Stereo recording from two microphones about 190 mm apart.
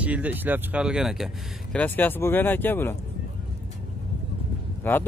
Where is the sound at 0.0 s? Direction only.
10° right (ahead or behind).